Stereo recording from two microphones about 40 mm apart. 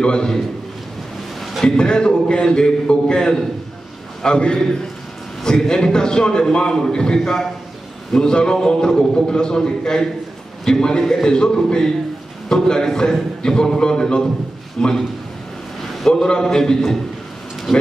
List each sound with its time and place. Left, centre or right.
0.0 s a man's voice: left
1.6 s a man's voice: left
16.1 s a man's voice: centre
17.7 s speech: centre